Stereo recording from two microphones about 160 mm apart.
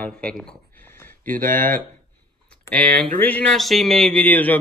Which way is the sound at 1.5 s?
60° right (ahead or behind).